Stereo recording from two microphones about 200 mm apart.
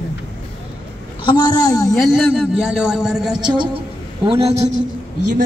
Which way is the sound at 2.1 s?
Centre (ahead or behind).